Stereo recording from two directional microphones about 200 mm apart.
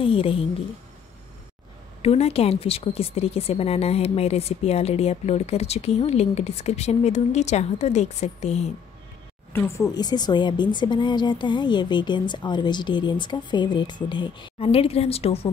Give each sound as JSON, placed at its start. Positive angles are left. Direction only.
{"t": 0.0, "sound": "speech", "side_deg": 25}
{"t": 2.0, "sound": "speech", "side_deg": 30}
{"t": 9.5, "sound": "speech", "side_deg": 15}